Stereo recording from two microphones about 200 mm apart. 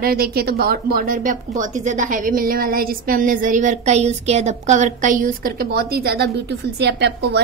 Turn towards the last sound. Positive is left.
turn(degrees=-55)  # may be behind; listen again after turning